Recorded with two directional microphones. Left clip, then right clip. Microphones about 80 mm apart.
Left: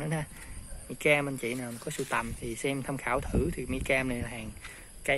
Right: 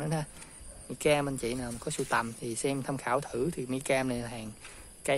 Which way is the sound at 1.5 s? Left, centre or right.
Centre.